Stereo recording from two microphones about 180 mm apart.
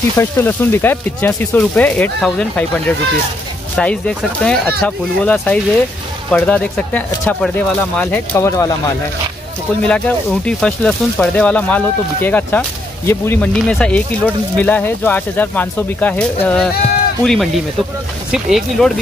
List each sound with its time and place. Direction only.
0.2 s speech: 10° left (ahead or behind)
3.7 s speech: 5° left (ahead or behind)
9.8 s speech: 5° left (ahead or behind)